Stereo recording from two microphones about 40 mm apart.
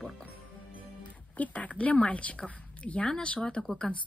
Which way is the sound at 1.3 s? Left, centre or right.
Left.